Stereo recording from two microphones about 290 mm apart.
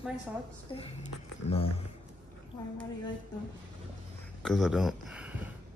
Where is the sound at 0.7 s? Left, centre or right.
Centre.